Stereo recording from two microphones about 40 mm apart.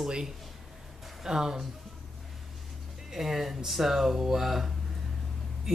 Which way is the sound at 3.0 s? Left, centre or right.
Centre.